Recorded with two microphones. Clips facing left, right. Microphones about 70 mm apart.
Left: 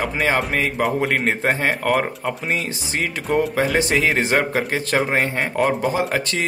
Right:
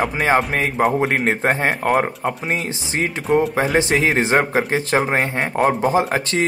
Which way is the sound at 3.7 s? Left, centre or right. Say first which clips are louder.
Right 3 dB; right.